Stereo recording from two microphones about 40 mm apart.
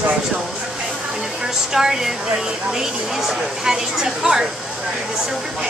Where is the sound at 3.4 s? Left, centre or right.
Centre.